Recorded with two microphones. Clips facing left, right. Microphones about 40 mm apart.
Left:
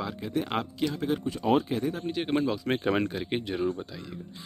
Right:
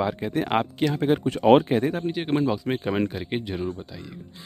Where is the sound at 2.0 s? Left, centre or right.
Centre.